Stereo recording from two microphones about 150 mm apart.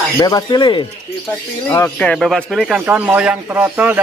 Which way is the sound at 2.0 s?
5° left (ahead or behind).